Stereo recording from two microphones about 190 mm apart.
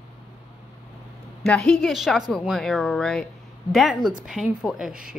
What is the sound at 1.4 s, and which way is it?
Speech, 5° left (ahead or behind).